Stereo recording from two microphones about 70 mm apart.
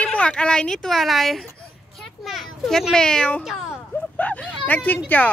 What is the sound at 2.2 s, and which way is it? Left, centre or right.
Children playing, centre.